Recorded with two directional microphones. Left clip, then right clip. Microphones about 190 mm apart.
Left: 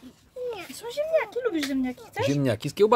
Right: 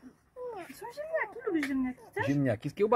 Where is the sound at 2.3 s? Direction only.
10° left (ahead or behind).